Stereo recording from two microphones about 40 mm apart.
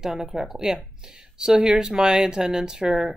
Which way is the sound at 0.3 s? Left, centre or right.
Centre.